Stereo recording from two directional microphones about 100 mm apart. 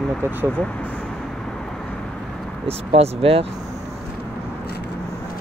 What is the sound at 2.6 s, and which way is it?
Speech, 85° right.